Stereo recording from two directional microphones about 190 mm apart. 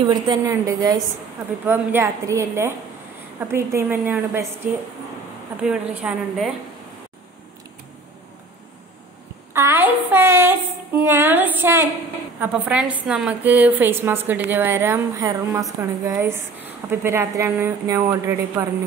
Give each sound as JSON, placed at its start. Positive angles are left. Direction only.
{"t": 0.1, "sound": "a woman's voice", "side_deg": -20}
{"t": 5.6, "sound": "a woman's voice", "side_deg": -5}
{"t": 9.5, "sound": "a woman's voice", "side_deg": -15}